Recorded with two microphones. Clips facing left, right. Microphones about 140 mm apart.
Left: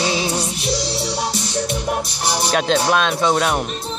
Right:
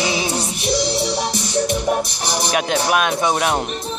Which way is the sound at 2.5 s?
15° right (ahead or behind).